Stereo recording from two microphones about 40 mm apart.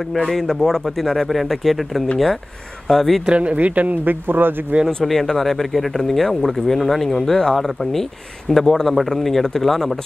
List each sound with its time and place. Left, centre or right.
0.3 s speech: centre
3.3 s speech: right
4.8 s speech: centre